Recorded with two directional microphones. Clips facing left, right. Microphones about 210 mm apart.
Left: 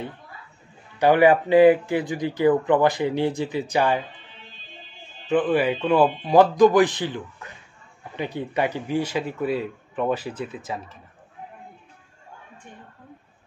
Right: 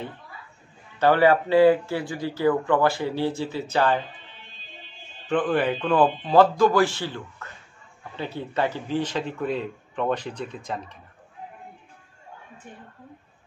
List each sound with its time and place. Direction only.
0.9 s speech: 15° left (ahead or behind)
5.2 s speech: 10° left (ahead or behind)